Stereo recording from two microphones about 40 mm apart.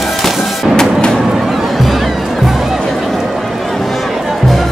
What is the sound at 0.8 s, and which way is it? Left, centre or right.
Music, left.